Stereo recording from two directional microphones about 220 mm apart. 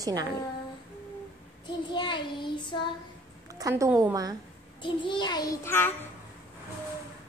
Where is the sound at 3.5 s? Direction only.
15° right (ahead or behind).